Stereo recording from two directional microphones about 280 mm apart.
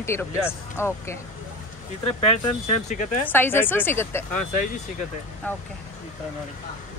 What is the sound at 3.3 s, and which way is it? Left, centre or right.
Speech, centre.